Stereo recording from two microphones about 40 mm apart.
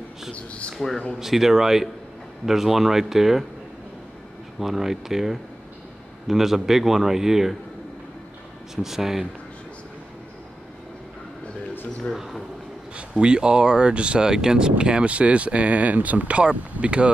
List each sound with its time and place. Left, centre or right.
0.3 s speech: left
0.7 s speech: centre
1.2 s a man's voice: centre
4.6 s a man's voice: centre
8.8 s a man's voice: centre
13.1 s speech: right